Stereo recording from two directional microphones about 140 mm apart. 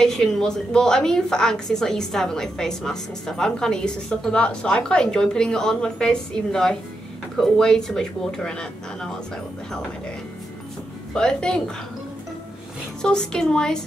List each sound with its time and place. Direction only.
0.0 s a woman's voice: 5° left (ahead or behind)
11.1 s a woman's voice: 5° left (ahead or behind)
13.0 s a woman's voice: 5° left (ahead or behind)